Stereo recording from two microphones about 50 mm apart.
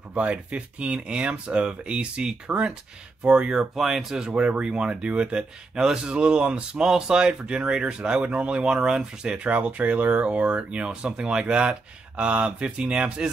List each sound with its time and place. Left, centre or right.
0.1 s speech: right
3.7 s speech: centre